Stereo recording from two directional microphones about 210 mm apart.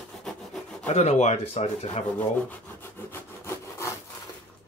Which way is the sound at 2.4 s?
10° left (ahead or behind).